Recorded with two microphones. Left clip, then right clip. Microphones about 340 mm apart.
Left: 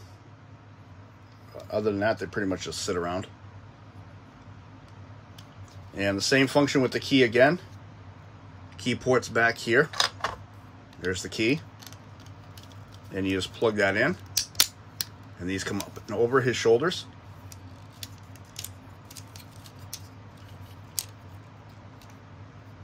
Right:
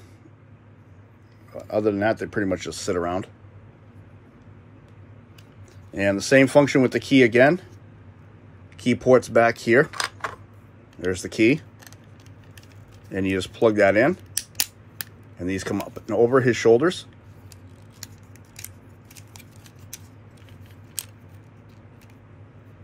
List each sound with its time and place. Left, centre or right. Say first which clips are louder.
1.6 s speech: right 4 dB; right
5.9 s speech: right 6 dB; centre
8.7 s speech: right 7 dB; centre
11.1 s speech: right 6 dB; centre
13.1 s speech: right 4 dB; right
15.4 s speech: right 4 dB; centre